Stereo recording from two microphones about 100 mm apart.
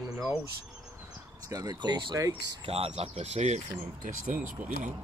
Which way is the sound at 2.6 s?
85° right.